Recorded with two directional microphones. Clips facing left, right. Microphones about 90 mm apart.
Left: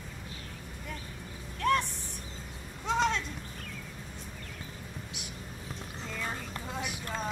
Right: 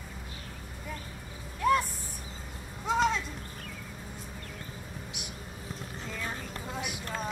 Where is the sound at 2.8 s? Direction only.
5° right (ahead or behind).